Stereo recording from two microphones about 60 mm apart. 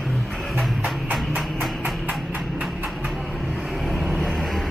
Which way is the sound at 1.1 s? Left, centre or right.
Centre.